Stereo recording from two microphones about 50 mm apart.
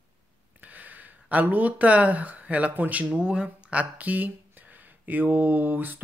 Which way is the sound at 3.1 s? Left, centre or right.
Centre.